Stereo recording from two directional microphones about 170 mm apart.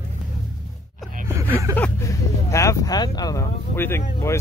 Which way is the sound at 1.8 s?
15° left (ahead or behind).